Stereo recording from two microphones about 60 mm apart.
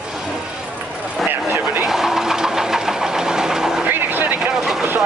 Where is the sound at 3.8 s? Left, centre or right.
Right.